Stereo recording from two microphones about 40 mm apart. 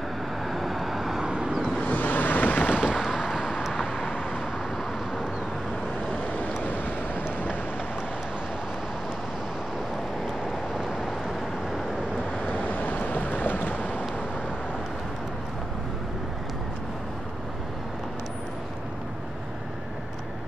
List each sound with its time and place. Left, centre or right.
0.5 s vehicle: centre
1.2 s vehicle: right
1.8 s vehicle: left
3.0 s vehicle: centre
6.2 s waves: left
6.6 s vehicle: left
12.5 s waves: left